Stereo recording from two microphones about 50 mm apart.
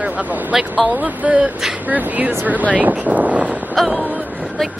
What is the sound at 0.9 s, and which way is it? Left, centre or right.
Speech, right.